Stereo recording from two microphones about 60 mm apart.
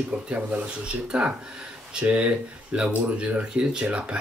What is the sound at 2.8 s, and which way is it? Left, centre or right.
Speech, centre.